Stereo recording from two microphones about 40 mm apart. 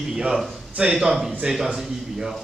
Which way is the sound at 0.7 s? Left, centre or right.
Right.